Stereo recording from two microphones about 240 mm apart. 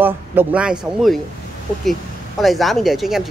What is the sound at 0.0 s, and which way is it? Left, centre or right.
Speech, centre.